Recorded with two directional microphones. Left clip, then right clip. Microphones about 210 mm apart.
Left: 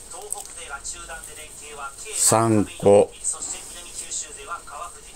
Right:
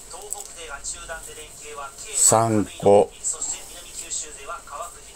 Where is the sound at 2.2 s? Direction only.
20° left (ahead or behind).